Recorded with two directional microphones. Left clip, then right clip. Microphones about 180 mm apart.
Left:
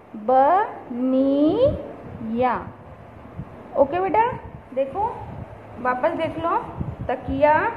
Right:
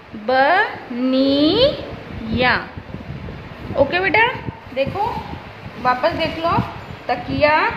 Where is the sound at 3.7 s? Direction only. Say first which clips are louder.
Right 3 dB; centre (ahead or behind).